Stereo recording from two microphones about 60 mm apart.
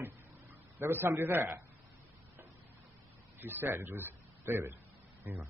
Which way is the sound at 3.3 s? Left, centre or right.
Right.